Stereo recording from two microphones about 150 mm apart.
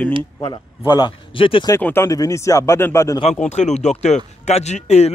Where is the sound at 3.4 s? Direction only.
50° left (ahead or behind).